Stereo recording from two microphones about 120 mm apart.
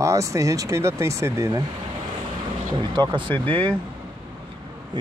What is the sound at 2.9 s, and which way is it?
Speech, 40° right (ahead or behind).